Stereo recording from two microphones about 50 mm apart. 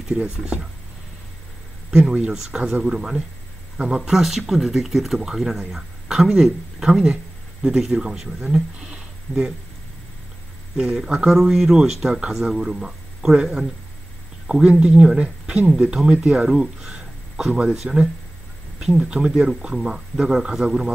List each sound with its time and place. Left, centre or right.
1.9 s speech: centre
10.8 s speech: centre
14.7 s speech: centre